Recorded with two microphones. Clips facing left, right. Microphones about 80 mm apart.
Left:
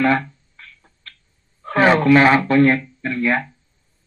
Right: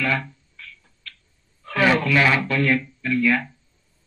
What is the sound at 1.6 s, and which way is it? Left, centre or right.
Speech, left.